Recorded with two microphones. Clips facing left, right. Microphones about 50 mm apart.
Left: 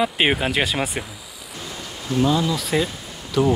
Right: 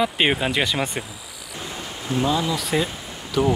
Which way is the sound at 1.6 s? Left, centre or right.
Right.